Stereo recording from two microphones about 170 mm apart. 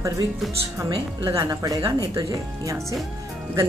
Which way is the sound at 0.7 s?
20° right (ahead or behind).